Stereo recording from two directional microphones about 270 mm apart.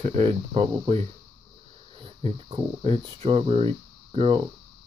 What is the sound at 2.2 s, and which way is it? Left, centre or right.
Speech, right.